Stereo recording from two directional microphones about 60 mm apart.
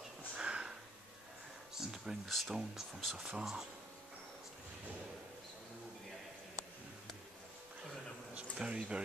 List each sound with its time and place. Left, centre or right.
0.4 s sniff: centre
1.8 s a sound: centre
2.2 s speech: centre
8.4 s speech: centre